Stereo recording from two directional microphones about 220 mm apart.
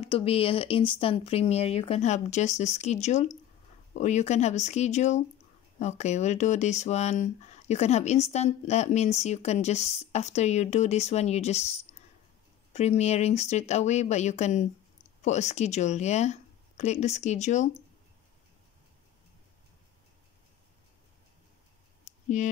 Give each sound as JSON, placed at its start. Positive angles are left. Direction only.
{"t": 0.0, "sound": "speech", "side_deg": 25}
{"t": 22.0, "sound": "clicking", "side_deg": 35}